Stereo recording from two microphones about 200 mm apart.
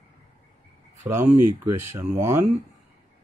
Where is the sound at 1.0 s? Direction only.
10° right (ahead or behind).